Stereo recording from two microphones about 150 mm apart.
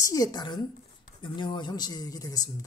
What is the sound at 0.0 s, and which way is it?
A woman's voice, 25° left (ahead or behind).